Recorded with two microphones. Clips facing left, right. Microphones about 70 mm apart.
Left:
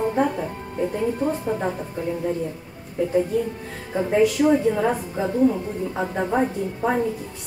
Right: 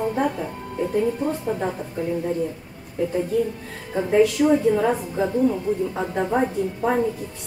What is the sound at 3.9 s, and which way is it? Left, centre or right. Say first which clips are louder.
Speech: right 1 dB; centre.